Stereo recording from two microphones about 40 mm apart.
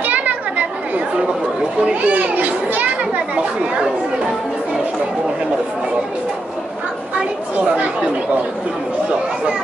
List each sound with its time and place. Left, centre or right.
0.0 s chatter: right
1.9 s a child's voice: right
7.6 s a child's voice: right